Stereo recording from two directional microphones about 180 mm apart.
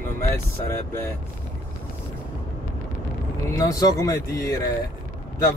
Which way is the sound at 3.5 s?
20° left (ahead or behind).